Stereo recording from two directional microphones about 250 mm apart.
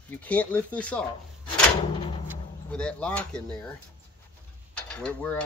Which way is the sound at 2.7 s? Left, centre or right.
Centre.